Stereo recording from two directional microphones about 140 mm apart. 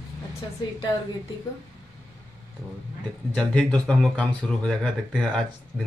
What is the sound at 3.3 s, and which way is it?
Speech, 10° left (ahead or behind).